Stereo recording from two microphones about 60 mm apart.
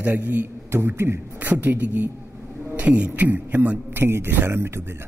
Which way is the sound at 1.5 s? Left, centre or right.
Right.